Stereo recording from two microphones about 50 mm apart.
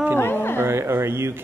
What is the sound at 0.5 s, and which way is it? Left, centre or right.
Speech, right.